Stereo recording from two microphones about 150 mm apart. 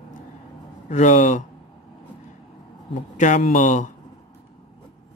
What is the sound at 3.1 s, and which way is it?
Speech, 55° left (ahead or behind).